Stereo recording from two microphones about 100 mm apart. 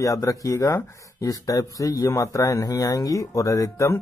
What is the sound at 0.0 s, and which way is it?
A man's voice, 35° left (ahead or behind).